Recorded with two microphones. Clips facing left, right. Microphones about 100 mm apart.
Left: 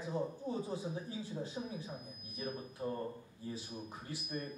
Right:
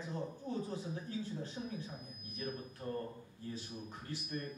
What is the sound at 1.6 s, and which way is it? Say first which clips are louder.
Speech: left 2 dB; 30° left (ahead or behind).